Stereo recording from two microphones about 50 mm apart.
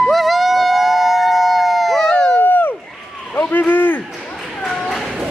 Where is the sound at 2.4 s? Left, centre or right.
Left.